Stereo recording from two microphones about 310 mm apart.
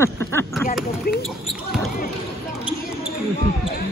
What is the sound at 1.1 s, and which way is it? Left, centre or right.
Speech, left.